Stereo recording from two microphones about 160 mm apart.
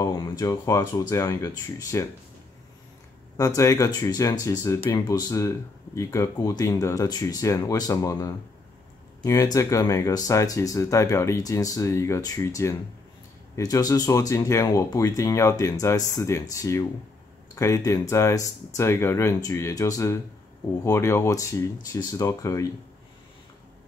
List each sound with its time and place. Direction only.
0.0 s speech: 20° left (ahead or behind)
3.3 s speech: 20° left (ahead or behind)